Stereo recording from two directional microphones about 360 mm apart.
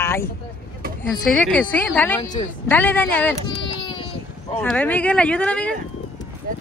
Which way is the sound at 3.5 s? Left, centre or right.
Centre.